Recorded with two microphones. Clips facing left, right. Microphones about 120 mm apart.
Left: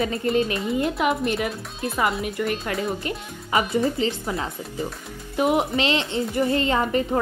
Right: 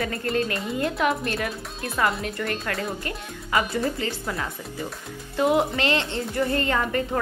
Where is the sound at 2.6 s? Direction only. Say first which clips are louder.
Left 3 dB; 20° left (ahead or behind).